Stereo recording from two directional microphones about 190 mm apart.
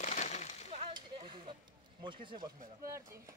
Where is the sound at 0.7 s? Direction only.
35° right (ahead or behind).